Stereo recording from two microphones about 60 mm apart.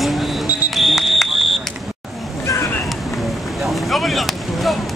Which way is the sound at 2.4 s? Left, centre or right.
Left.